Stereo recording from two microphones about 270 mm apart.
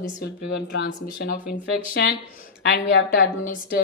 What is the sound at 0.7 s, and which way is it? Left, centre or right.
Speech, left.